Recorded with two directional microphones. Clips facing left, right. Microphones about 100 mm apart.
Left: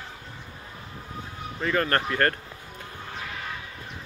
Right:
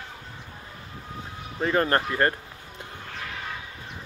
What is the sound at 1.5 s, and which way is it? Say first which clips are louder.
Speech: right 2 dB; 30° right (ahead or behind).